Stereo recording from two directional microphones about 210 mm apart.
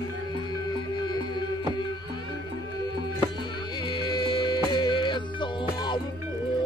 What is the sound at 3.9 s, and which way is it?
Music, 20° left (ahead or behind).